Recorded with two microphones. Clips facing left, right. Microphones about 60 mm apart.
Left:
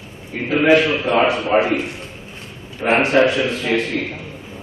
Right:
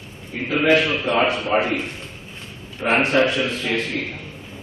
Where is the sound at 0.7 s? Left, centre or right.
Centre.